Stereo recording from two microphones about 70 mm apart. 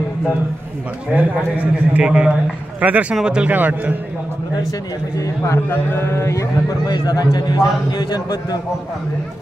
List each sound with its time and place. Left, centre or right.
1.1 s a man's voice: right
3.5 s a man's voice: right
5.7 s speech: left
6.9 s a man's voice: left
8.1 s a man's voice: left